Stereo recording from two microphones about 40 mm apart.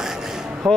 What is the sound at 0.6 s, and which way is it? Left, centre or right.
Speech, centre.